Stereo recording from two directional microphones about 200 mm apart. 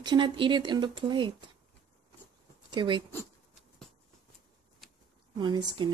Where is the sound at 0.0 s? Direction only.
25° right (ahead or behind).